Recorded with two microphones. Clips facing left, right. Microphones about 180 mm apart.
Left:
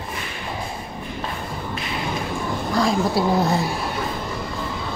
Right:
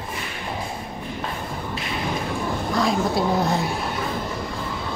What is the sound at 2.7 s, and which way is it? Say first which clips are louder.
Speech: left 2 dB; centre (ahead or behind).